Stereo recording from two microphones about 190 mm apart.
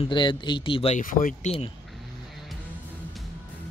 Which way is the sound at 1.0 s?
45° left (ahead or behind).